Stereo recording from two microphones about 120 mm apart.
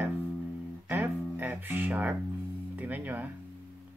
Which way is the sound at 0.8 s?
15° right (ahead or behind).